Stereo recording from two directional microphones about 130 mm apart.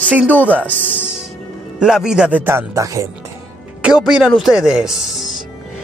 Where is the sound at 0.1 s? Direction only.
10° right (ahead or behind).